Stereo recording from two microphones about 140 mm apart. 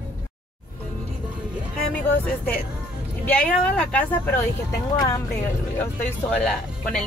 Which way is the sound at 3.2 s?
10° left (ahead or behind).